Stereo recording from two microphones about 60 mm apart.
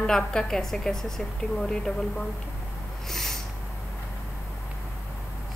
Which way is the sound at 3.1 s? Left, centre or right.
Centre.